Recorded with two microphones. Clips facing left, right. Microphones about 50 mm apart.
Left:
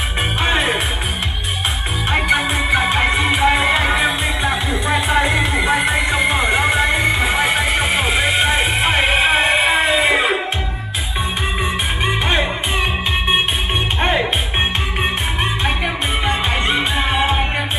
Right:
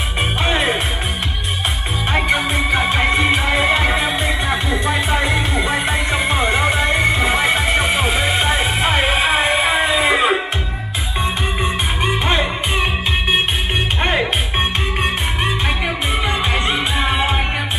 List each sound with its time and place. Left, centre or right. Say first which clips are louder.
0.4 s music: left 1 dB; centre
2.8 s music: even; centre
3.3 s music: left 1 dB; centre
4.6 s music: even; left
6.2 s music: right 1 dB; centre
7.2 s music: even; centre
9.4 s a sound: left 1 dB; left
9.9 s music: right 1 dB; centre
11.6 s music: right 1 dB; centre
16.3 s music: left 1 dB; centre